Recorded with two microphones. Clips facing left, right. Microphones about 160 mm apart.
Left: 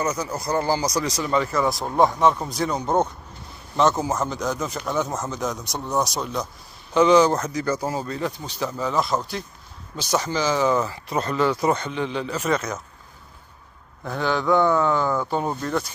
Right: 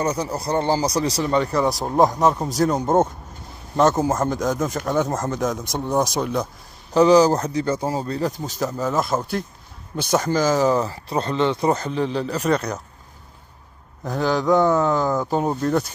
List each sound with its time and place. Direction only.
0.0 s speech: 30° right (ahead or behind)
4.1 s speech: 50° right (ahead or behind)
6.9 s speech: 35° right (ahead or behind)
11.7 s speech: 35° right (ahead or behind)
14.0 s speech: 40° right (ahead or behind)
15.2 s speech: 10° right (ahead or behind)